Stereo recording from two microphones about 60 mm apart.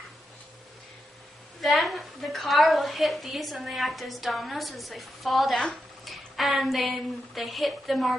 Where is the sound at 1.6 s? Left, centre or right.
Centre.